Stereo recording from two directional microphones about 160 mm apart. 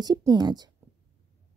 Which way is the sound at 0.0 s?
25° right (ahead or behind).